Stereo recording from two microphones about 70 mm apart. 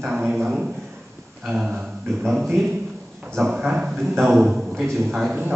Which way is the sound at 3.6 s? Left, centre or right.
Centre.